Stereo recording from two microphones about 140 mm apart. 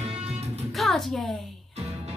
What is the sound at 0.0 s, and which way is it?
Music, 50° right (ahead or behind).